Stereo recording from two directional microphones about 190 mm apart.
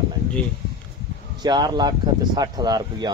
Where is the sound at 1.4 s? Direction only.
20° right (ahead or behind).